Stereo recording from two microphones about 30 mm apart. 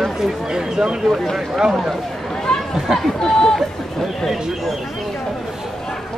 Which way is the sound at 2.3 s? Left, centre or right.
Left.